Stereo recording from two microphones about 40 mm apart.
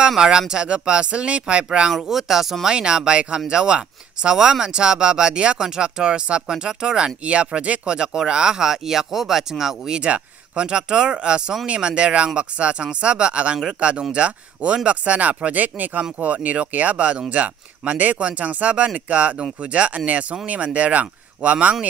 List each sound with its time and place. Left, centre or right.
0.4 s speech: centre
2.0 s speech: centre
7.2 s speech: right
7.9 s speech: centre
9.9 s speech: right